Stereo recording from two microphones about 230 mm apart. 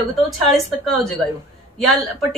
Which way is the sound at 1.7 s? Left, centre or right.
Centre.